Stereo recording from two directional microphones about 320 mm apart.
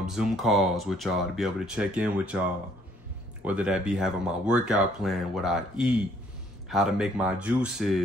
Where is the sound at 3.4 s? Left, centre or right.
Centre.